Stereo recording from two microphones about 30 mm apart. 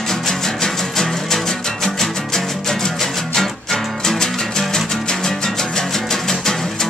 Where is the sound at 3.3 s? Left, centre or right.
Centre.